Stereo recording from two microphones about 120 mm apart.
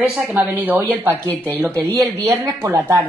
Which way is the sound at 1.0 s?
25° right (ahead or behind).